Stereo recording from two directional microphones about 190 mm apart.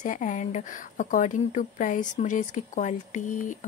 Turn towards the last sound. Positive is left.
turn(degrees=40)  # may be behind; listen again after turning